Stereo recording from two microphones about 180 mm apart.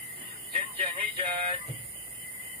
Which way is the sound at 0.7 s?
30° right (ahead or behind).